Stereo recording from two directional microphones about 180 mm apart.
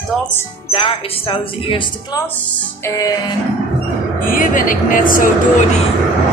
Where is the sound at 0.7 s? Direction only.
30° left (ahead or behind).